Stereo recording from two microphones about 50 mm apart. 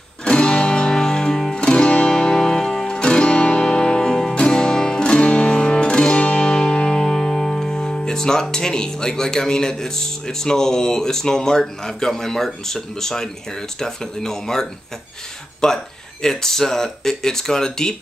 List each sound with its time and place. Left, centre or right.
0.2 s music: left
4.4 s music: centre
15.6 s speech: centre